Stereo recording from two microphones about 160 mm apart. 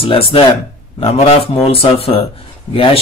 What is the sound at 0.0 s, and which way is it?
Speech, 35° left (ahead or behind).